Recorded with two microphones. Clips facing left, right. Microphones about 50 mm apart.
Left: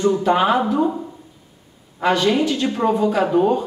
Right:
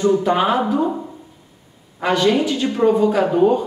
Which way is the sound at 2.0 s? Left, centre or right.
Centre.